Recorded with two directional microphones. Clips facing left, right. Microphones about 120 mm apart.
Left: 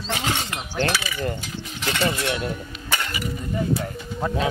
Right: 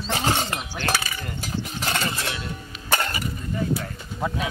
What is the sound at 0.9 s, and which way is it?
Cutlery, 45° right (ahead or behind).